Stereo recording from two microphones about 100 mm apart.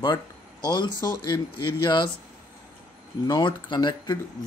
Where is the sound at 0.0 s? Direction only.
45° left (ahead or behind).